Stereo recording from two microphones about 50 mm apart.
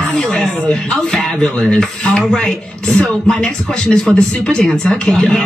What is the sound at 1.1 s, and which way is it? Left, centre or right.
A man's voice, centre.